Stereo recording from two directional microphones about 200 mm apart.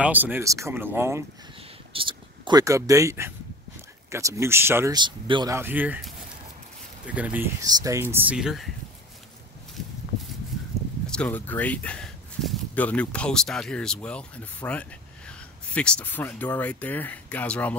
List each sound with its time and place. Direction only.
0.0 s speech: 10° right (ahead or behind)
2.0 s speech: 25° right (ahead or behind); by 8.7 s centre (ahead or behind)
11.1 s speech: 5° left (ahead or behind)